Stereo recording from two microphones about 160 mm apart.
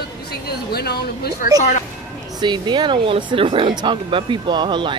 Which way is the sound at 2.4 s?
30° right (ahead or behind).